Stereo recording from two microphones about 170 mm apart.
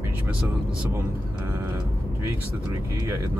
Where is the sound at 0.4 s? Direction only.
5° right (ahead or behind).